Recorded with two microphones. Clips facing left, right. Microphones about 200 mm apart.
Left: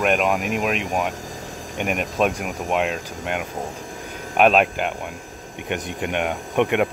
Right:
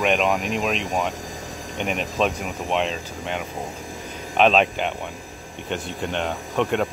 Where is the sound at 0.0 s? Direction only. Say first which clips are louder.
Left 1 dB; 5° left (ahead or behind).